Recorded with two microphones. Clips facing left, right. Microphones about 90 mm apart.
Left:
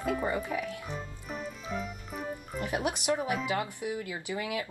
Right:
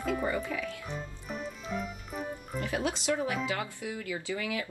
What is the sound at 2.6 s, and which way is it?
Speech, 20° left (ahead or behind).